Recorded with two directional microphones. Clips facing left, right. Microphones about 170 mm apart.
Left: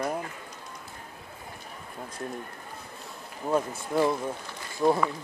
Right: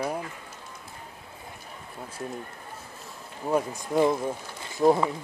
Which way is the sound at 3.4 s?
15° right (ahead or behind).